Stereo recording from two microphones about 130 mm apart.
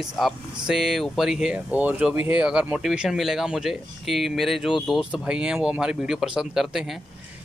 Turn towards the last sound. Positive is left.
turn(degrees=0)  # may be behind; listen again after turning